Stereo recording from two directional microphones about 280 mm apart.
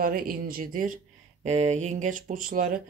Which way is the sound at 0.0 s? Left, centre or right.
Right.